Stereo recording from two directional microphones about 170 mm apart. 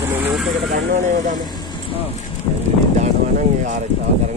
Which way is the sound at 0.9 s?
45° right (ahead or behind).